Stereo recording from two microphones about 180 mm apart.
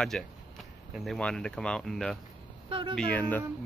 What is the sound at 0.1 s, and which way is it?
Speech, centre (ahead or behind).